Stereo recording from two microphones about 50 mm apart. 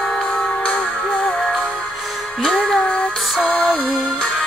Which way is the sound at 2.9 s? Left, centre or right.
Left.